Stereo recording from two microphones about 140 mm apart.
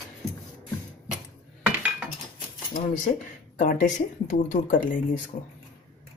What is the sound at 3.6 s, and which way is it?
Speech, 70° left (ahead or behind).